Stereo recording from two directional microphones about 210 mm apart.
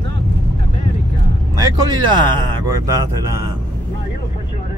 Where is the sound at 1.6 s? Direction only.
20° right (ahead or behind).